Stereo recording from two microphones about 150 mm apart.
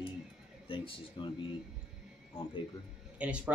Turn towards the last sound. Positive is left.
turn(degrees=-10)  # may be behind; listen again after turning